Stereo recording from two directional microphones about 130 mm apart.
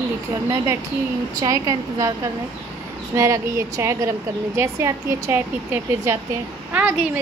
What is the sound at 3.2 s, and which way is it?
A woman's voice, 20° right (ahead or behind).